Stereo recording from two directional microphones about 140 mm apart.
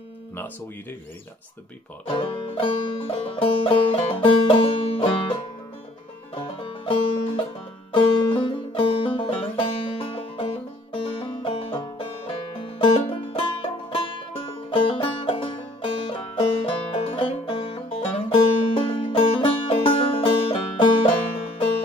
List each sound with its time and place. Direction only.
2.0 s music: 40° left (ahead or behind)
6.6 s banjo: 40° left (ahead or behind)
7.9 s music: 35° left (ahead or behind)